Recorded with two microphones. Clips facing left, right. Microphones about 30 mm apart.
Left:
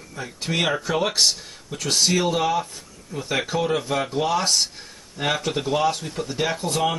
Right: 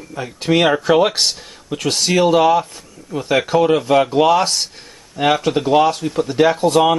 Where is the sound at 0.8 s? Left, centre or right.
Right.